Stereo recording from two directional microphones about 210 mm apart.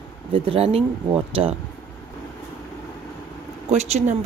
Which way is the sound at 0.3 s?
25° right (ahead or behind).